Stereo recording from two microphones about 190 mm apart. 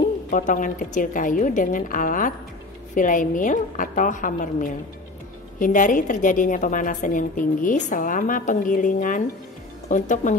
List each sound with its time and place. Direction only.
0.3 s a woman's voice: 40° left (ahead or behind)